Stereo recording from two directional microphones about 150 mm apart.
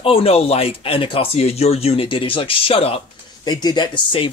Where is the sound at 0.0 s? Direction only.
40° left (ahead or behind).